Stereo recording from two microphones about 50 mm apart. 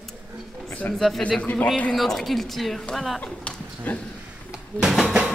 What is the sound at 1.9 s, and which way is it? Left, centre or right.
A woman's voice, centre.